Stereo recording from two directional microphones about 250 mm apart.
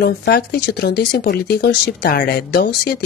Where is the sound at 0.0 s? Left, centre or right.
Left.